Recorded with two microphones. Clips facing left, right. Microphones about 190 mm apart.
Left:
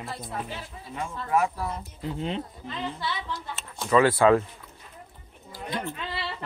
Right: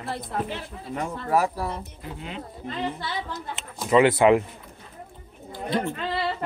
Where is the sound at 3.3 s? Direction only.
20° right (ahead or behind).